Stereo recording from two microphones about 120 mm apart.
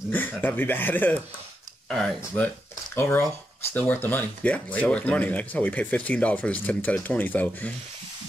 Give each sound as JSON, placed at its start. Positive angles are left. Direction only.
{"t": 0.1, "sound": "speech", "side_deg": 15}
{"t": 1.9, "sound": "speech", "side_deg": 5}
{"t": 2.3, "sound": "speech", "side_deg": 15}